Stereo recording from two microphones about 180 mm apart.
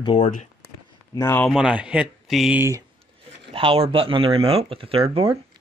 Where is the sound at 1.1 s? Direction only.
15° left (ahead or behind).